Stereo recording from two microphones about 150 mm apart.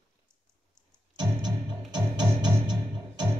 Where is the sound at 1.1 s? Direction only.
30° right (ahead or behind).